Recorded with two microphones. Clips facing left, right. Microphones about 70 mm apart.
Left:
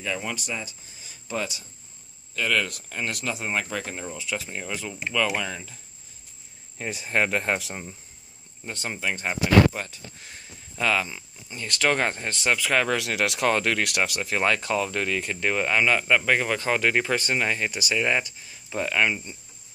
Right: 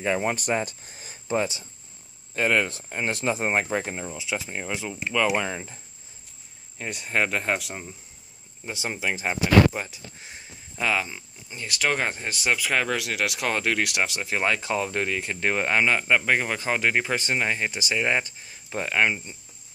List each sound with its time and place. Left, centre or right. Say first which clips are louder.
0.0 s speech: right 6 dB; right
1.2 s speech: right 5 dB; right
3.6 s speech: right 3 dB; right
5.4 s speech: right 2 dB; right
6.8 s speech: left 1 dB; centre; by 19.3 s right